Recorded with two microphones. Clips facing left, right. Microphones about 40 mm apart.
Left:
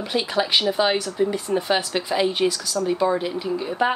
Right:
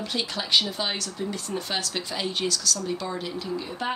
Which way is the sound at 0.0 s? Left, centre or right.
Centre.